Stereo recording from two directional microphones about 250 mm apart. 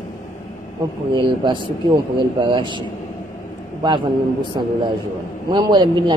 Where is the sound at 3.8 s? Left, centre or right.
Centre.